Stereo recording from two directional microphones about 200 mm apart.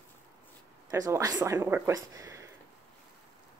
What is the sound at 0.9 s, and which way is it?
Speech, 15° right (ahead or behind).